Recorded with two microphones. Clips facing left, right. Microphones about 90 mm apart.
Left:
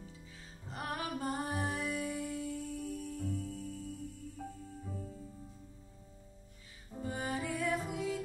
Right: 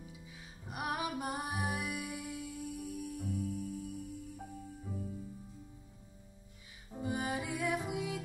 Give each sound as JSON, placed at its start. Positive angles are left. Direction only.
{"t": 0.7, "sound": "music", "side_deg": -15}
{"t": 6.9, "sound": "music", "side_deg": -15}